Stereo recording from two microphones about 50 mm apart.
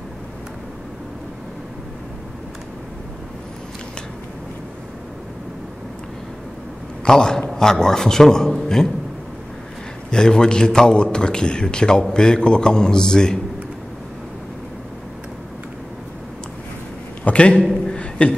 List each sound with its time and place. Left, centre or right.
7.1 s a man's voice: centre
10.1 s a man's voice: centre
17.2 s a man's voice: left
17.9 s a sound: left